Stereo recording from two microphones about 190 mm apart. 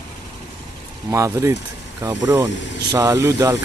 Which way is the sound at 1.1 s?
15° right (ahead or behind).